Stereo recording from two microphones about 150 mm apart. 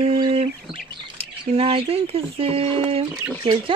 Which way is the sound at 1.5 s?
40° right (ahead or behind).